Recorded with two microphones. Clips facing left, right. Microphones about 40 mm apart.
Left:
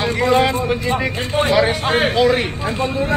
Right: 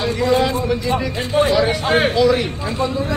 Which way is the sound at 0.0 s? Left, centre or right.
Left.